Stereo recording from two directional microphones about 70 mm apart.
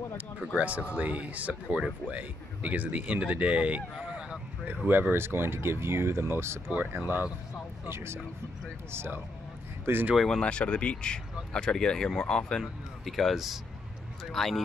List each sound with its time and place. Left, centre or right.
0.6 s speech: centre
3.9 s a sound: centre
4.8 s speech: right
6.7 s speech: right
7.9 s speech: right
10.1 s speech: centre
10.4 s speech: centre